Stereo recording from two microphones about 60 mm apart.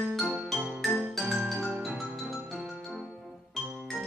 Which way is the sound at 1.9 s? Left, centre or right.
Centre.